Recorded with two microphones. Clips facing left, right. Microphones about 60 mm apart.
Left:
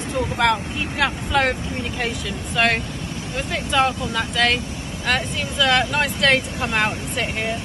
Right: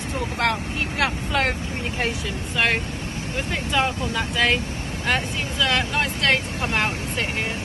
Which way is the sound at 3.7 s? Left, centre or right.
Centre.